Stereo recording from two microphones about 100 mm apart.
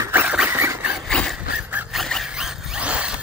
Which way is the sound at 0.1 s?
15° right (ahead or behind).